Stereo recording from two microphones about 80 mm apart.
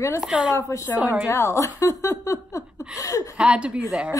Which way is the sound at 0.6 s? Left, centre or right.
Left.